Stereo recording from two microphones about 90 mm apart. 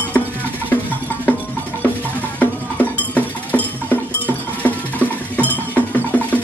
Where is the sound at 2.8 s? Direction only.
20° left (ahead or behind).